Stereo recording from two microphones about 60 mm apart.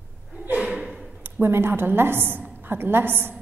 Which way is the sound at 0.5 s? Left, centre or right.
Centre.